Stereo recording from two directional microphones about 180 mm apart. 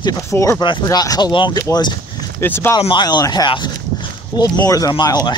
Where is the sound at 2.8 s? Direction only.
25° left (ahead or behind).